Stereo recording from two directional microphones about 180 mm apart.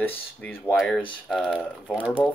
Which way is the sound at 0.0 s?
10° left (ahead or behind).